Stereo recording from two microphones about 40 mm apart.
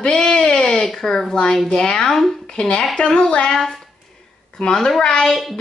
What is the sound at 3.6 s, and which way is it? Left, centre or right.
A woman's voice, centre.